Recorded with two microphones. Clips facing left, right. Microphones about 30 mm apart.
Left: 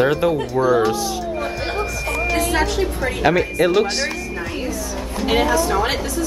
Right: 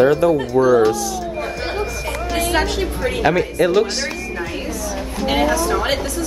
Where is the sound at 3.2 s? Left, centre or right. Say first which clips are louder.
Even; centre.